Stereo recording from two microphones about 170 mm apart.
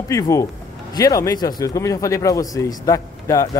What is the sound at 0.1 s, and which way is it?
A man's voice, 20° left (ahead or behind).